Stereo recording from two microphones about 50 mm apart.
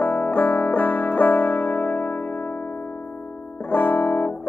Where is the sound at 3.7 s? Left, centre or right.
Left.